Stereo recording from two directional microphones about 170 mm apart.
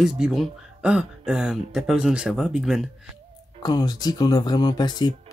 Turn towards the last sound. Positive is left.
turn(degrees=25)  # may be behind; listen again after turning